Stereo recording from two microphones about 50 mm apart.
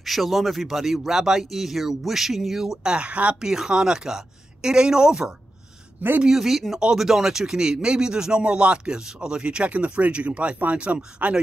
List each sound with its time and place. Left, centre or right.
0.0 s speech: centre; by 3.3 s right
3.3 s speech: centre; by 11.3 s right